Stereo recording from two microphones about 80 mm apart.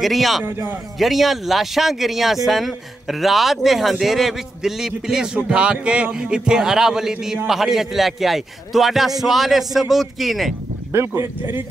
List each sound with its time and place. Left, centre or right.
0.0 s a man's voice: centre
10.9 s speech: right